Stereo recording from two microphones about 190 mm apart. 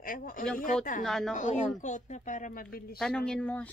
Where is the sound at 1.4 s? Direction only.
40° left (ahead or behind).